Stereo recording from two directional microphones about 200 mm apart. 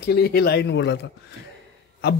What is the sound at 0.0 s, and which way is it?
Speech, 55° left (ahead or behind).